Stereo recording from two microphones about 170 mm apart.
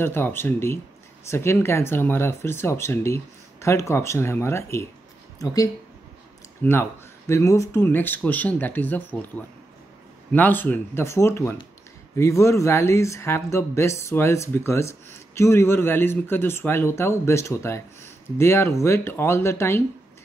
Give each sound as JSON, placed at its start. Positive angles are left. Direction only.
{"t": 0.0, "sound": "speech", "side_deg": 15}
{"t": 10.3, "sound": "speech", "side_deg": 10}